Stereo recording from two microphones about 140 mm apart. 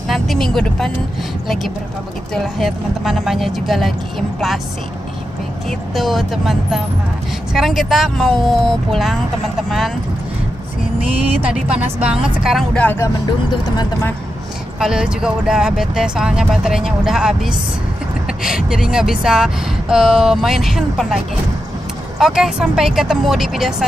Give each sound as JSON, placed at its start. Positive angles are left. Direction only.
{"t": 0.1, "sound": "speech", "side_deg": 0}
{"t": 2.3, "sound": "speech", "side_deg": 0}
{"t": 5.7, "sound": "speech", "side_deg": 0}
{"t": 12.0, "sound": "speech", "side_deg": -5}
{"t": 12.7, "sound": "speech", "side_deg": 15}
{"t": 14.8, "sound": "speech", "side_deg": -5}
{"t": 22.2, "sound": "speech", "side_deg": -5}